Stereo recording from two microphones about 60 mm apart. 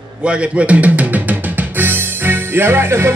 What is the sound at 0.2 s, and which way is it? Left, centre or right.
Speech, centre.